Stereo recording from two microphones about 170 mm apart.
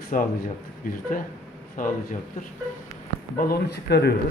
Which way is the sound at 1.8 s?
50° left (ahead or behind).